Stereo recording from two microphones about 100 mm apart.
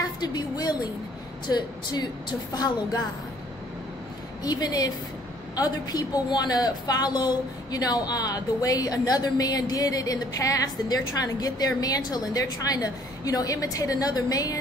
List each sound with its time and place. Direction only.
0.2 s a woman's voice: 45° left (ahead or behind)
4.4 s a woman's voice: 40° left (ahead or behind)